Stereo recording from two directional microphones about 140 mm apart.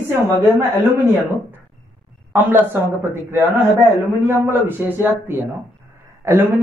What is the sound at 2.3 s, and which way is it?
A man's voice, 15° right (ahead or behind).